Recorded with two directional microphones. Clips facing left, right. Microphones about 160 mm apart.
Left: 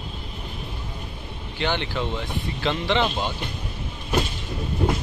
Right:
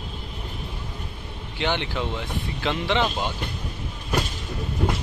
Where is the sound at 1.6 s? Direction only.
15° right (ahead or behind).